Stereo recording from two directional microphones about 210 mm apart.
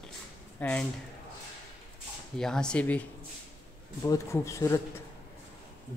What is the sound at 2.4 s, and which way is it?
Speech, 5° left (ahead or behind).